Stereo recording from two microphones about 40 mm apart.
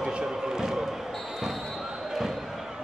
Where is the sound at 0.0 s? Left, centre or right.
Centre.